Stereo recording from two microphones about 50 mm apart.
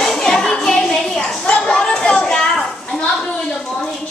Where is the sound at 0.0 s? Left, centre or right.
Centre.